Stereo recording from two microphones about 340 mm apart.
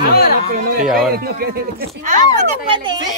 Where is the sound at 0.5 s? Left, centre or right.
Right.